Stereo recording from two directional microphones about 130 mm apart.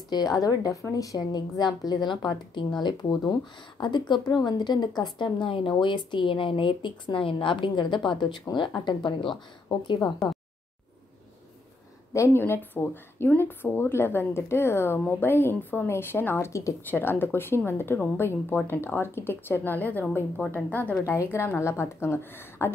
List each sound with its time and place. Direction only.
0.1 s speech: 30° left (ahead or behind)
10.2 s a sound: centre (ahead or behind)
12.1 s speech: 20° left (ahead or behind)